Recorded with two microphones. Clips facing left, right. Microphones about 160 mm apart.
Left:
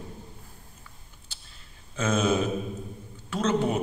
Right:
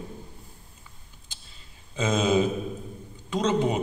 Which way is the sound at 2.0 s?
15° right (ahead or behind).